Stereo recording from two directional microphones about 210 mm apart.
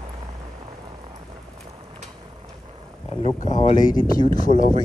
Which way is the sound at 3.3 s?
35° left (ahead or behind).